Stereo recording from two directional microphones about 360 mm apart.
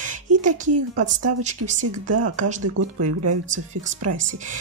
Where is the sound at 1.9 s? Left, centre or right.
Right.